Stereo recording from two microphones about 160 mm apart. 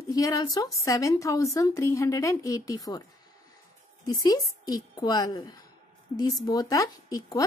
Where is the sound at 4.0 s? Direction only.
25° left (ahead or behind).